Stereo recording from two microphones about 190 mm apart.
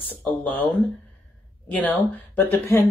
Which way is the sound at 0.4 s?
5° left (ahead or behind).